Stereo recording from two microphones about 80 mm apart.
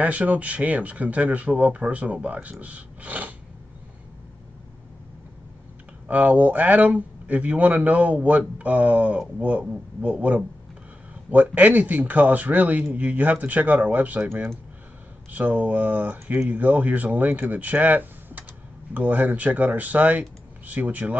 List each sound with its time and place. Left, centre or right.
0.0 s speech: centre
6.0 s speech: centre